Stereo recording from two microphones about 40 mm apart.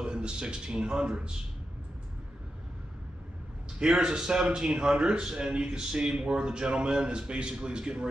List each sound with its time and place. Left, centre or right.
0.0 s a man's voice: right
3.8 s a man's voice: centre